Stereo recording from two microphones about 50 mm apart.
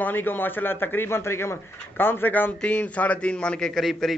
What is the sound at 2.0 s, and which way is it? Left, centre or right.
Speech, left.